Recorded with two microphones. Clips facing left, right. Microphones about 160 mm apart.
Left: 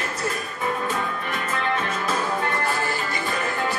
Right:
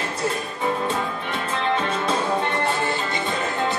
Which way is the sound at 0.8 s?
30° right (ahead or behind).